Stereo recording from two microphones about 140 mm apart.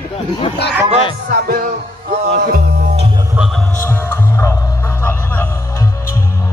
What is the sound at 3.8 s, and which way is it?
Music, 15° left (ahead or behind).